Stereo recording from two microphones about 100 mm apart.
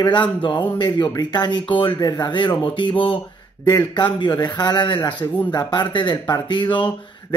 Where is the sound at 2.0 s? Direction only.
50° left (ahead or behind).